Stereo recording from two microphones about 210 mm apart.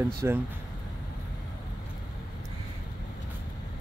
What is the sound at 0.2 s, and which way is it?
Speech, 15° right (ahead or behind).